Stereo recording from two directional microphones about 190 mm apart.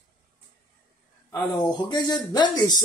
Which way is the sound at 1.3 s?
20° left (ahead or behind).